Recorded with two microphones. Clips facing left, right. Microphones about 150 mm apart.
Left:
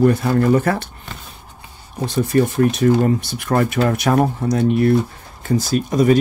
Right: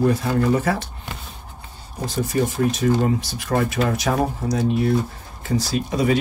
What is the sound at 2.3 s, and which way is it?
Speech, 75° left (ahead or behind).